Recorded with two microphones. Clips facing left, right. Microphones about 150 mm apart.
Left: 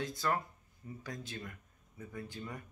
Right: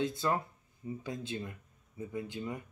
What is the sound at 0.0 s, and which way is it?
Speech, 25° right (ahead or behind).